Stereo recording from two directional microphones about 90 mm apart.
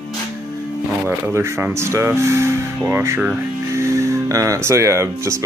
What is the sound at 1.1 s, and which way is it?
Speech, 30° right (ahead or behind).